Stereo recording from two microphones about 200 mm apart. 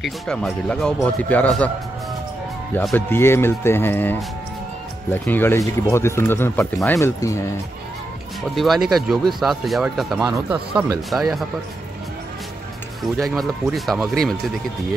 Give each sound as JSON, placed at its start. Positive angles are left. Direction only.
{"t": 0.0, "sound": "speech", "side_deg": 5}
{"t": 2.7, "sound": "speech", "side_deg": 10}
{"t": 8.5, "sound": "speech", "side_deg": 0}
{"t": 10.2, "sound": "speech", "side_deg": -15}
{"t": 11.1, "sound": "speech", "side_deg": 0}
{"t": 13.2, "sound": "speech", "side_deg": 0}